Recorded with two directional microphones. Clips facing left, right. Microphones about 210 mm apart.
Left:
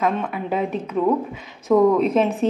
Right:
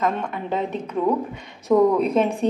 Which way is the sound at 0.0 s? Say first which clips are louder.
Left 2 dB; 5° left (ahead or behind).